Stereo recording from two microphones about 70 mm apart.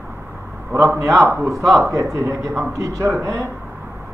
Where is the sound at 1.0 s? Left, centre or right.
Right.